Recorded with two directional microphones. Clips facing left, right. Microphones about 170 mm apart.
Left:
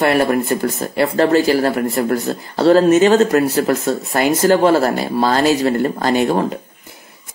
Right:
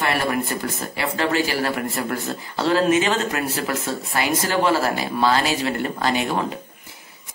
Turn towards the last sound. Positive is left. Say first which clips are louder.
# left 6 dB
turn(degrees=45)  # may be behind; listen again after turning